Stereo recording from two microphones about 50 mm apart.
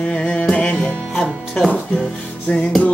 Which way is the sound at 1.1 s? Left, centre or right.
Centre.